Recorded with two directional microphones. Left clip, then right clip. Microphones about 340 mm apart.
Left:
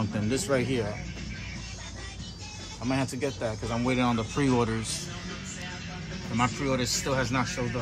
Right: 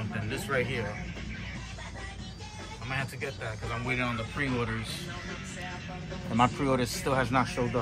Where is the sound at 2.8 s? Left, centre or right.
Centre.